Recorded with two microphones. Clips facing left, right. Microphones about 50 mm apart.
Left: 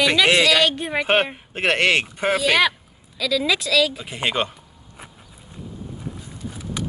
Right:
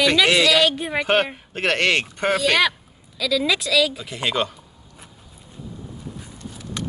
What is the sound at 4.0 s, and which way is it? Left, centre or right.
Speech, left.